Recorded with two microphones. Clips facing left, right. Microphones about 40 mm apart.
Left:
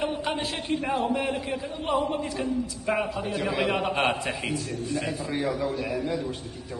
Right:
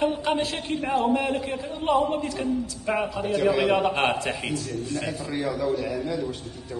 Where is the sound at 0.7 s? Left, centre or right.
Centre.